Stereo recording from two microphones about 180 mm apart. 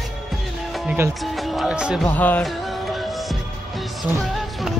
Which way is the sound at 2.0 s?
10° left (ahead or behind).